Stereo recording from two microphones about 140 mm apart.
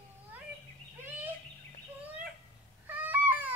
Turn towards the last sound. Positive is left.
turn(degrees=-10)  # may be behind; listen again after turning